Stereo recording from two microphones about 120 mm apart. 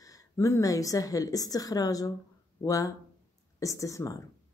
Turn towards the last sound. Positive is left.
turn(degrees=25)  # may be behind; listen again after turning